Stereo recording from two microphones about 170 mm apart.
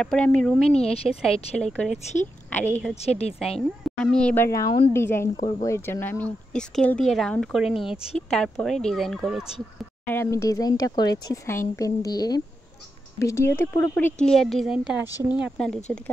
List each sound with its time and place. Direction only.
0.0 s speech: 5° left (ahead or behind)
0.7 s speech: 35° left (ahead or behind)
1.0 s a woman's voice: 5° left (ahead or behind)
3.0 s speech: 40° left (ahead or behind)
4.0 s speech: 5° left (ahead or behind)
10.0 s a woman's voice: 15° left (ahead or behind); by 15.5 s 10° right (ahead or behind)
15.5 s speech: 5° left (ahead or behind)